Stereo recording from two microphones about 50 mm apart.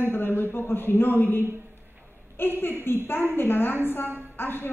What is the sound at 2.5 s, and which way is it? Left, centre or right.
A woman's voice, left.